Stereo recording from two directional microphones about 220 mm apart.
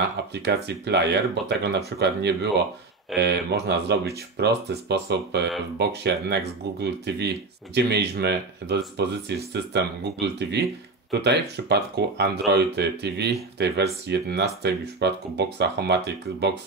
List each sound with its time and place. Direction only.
0.3 s speech: 50° right (ahead or behind)